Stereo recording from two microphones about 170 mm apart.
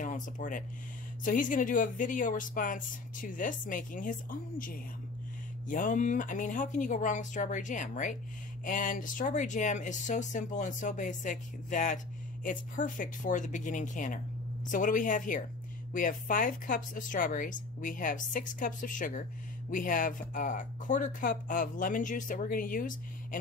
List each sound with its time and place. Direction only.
0.0 s speech: 50° left (ahead or behind)